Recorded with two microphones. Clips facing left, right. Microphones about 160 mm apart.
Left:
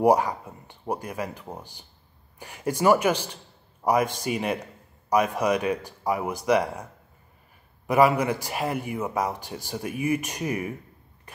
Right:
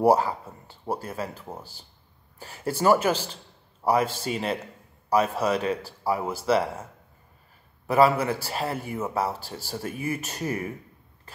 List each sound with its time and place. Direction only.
0.0 s a man's voice: 15° left (ahead or behind)
11.3 s throat clearing: 15° left (ahead or behind)